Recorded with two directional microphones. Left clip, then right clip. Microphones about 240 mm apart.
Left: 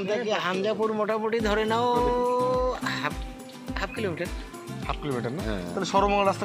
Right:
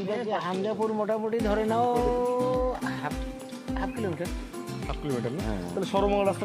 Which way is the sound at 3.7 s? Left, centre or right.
Centre.